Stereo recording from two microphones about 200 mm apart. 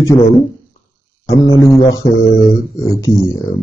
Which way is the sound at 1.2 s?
15° left (ahead or behind).